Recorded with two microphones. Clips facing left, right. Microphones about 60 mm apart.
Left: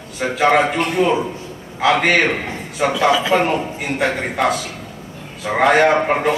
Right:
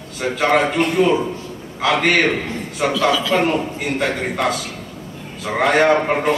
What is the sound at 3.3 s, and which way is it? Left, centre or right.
Speech, centre.